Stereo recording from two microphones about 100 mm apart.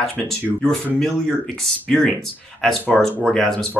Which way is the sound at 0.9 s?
5° left (ahead or behind).